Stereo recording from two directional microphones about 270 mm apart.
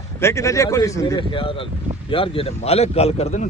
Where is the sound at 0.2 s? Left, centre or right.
Centre.